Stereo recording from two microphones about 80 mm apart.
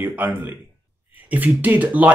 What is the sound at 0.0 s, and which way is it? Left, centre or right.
Speech, right.